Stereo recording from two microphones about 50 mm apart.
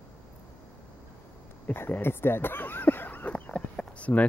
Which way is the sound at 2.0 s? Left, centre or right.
Left.